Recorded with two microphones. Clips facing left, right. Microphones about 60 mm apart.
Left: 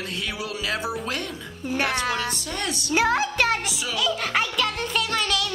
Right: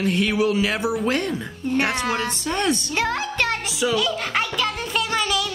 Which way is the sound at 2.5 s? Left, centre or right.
Right.